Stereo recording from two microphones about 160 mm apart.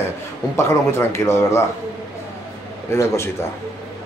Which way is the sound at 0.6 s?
15° left (ahead or behind).